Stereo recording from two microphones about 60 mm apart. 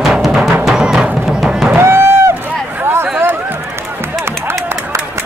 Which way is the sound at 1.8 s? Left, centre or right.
Right.